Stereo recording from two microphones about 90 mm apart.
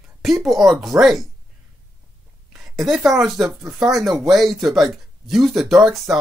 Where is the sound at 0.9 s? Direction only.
30° right (ahead or behind).